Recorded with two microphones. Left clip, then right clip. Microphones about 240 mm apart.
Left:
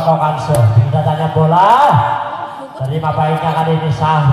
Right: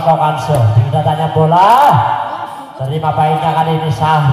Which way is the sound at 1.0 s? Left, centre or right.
Right.